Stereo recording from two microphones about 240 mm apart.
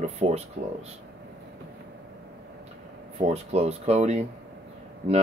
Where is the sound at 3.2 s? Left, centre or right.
Right.